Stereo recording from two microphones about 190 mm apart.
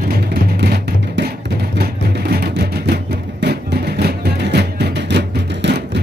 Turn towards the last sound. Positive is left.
turn(degrees=-65)  # may be behind; listen again after turning